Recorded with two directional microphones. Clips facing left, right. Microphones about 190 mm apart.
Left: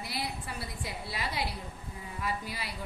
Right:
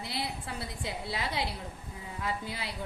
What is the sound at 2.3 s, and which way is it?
Speech, 20° right (ahead or behind).